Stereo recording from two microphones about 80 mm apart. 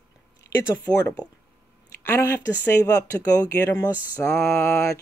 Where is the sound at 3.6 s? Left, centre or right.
Left.